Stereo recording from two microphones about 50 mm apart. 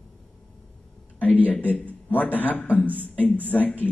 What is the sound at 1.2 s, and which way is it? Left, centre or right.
Speech, left.